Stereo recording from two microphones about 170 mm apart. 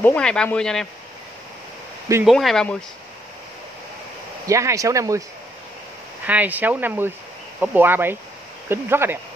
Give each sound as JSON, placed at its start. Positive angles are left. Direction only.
{"t": 0.0, "sound": "speech", "side_deg": 5}
{"t": 2.2, "sound": "speech", "side_deg": 0}
{"t": 4.5, "sound": "speech", "side_deg": -20}
{"t": 6.2, "sound": "speech", "side_deg": -10}